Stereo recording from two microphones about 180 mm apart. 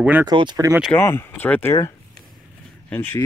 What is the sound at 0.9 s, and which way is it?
Speech, 15° left (ahead or behind).